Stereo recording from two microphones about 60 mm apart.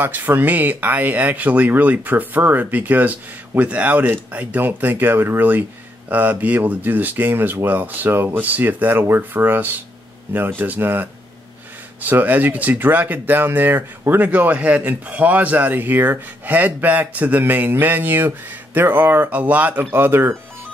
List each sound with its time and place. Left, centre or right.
0.0 s speech: right
19.9 s speech: right